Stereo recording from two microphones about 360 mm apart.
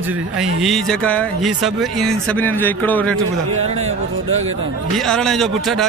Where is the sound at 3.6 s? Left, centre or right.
Centre.